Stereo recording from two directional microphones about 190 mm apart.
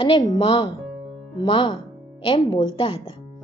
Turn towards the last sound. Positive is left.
turn(degrees=30)  # may be behind; listen again after turning